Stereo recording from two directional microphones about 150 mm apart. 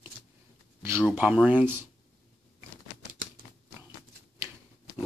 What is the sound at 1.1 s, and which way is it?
Speech, 10° right (ahead or behind).